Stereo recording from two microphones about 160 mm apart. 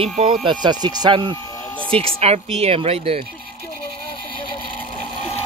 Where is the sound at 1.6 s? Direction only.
10° left (ahead or behind).